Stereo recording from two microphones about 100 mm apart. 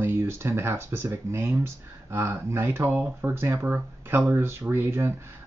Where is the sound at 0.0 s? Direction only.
25° right (ahead or behind).